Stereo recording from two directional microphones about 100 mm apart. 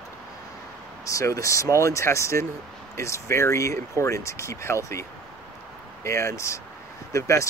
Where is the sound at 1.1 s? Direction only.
30° left (ahead or behind).